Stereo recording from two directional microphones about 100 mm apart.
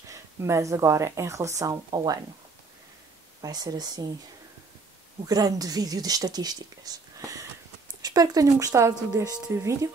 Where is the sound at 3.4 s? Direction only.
45° right (ahead or behind).